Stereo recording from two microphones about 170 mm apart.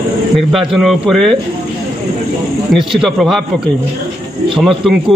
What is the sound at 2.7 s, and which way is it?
Speech, centre (ahead or behind).